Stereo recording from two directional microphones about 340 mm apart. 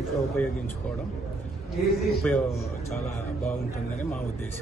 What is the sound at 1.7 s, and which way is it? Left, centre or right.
Speech, centre.